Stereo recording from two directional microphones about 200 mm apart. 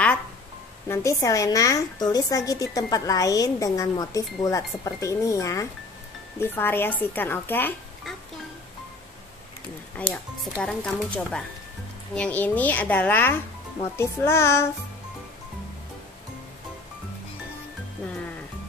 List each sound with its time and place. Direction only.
0.8 s a woman's voice: 15° left (ahead or behind)
9.9 s a woman's voice: 5° left (ahead or behind)